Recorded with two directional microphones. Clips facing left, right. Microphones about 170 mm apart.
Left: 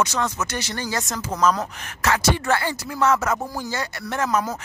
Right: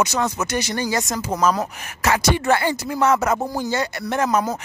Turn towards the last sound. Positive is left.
turn(degrees=-20)  # may be behind; listen again after turning